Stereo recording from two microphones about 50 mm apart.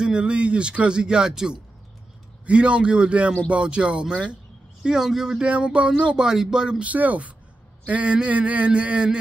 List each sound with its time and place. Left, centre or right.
0.0 s speech: right
5.4 s speech: right
6.8 s speech: right